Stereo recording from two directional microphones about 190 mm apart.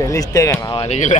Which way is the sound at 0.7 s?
35° left (ahead or behind).